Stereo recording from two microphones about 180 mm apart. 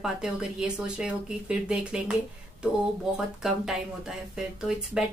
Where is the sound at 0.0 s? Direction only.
5° right (ahead or behind).